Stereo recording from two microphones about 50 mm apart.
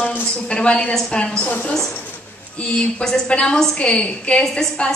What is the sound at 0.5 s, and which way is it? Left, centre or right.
Speech, centre.